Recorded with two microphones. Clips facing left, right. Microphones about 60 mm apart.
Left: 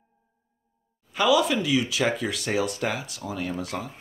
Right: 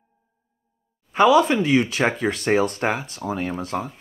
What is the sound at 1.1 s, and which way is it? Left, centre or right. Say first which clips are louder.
Speech: right 6 dB; right.